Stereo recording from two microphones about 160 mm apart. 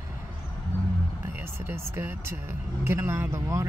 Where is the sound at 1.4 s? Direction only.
15° right (ahead or behind).